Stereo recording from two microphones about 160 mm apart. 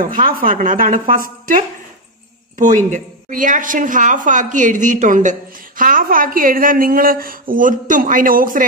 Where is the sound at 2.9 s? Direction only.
55° right (ahead or behind).